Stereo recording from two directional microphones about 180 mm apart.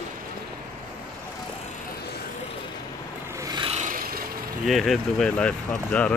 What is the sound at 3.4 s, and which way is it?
Filing, 25° right (ahead or behind).